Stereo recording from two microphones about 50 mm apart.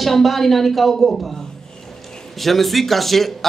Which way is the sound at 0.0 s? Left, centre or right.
Centre.